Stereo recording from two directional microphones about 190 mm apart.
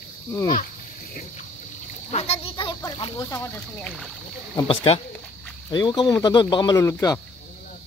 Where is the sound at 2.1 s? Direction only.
35° left (ahead or behind); by 4.1 s 5° left (ahead or behind).